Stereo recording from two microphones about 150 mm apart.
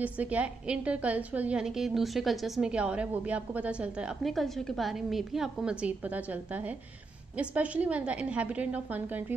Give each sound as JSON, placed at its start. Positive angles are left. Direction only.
{"t": 0.0, "sound": "a woman's voice", "side_deg": -10}